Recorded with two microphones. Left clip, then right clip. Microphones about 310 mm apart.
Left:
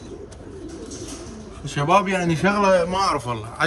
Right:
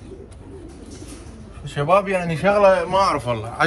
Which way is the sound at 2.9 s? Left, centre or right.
Centre.